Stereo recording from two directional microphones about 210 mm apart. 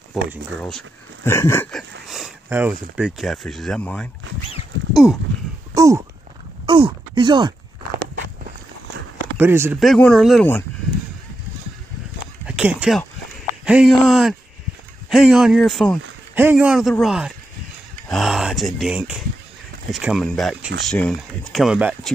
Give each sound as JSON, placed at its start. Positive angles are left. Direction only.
{"t": 0.1, "sound": "speech", "side_deg": 0}
{"t": 5.8, "sound": "speech", "side_deg": -15}
{"t": 9.4, "sound": "speech", "side_deg": -10}
{"t": 9.8, "sound": "speech", "side_deg": 0}
{"t": 12.4, "sound": "a sound", "side_deg": -5}
{"t": 13.7, "sound": "speech", "side_deg": -5}